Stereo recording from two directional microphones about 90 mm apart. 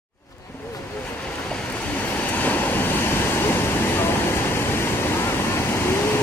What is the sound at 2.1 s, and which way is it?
Waves, 20° left (ahead or behind).